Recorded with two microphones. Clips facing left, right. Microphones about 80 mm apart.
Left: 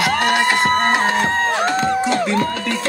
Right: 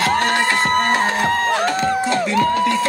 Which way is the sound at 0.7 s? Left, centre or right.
Left.